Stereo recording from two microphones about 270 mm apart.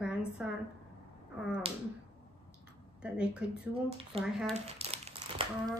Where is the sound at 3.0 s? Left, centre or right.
Centre.